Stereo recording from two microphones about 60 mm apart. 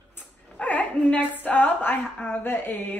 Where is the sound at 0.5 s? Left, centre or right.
Left.